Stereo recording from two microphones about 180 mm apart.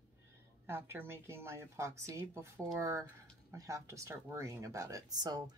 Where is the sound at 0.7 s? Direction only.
15° right (ahead or behind).